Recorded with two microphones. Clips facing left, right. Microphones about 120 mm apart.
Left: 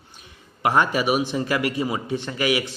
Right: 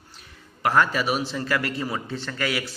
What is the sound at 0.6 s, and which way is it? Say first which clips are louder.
A man's voice: left 1 dB; 20° left (ahead or behind).